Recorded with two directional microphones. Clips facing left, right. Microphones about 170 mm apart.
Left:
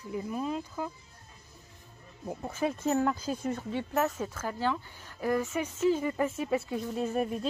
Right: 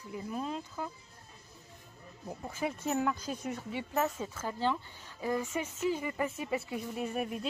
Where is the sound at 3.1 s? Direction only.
5° left (ahead or behind).